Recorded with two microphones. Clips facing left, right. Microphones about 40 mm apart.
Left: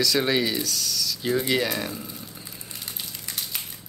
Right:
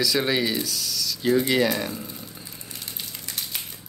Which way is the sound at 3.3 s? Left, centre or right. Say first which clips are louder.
Even; centre.